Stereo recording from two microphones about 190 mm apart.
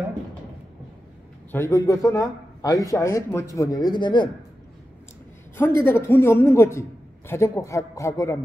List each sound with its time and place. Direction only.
1.5 s a man's voice: 15° left (ahead or behind)
5.6 s a man's voice: 15° left (ahead or behind)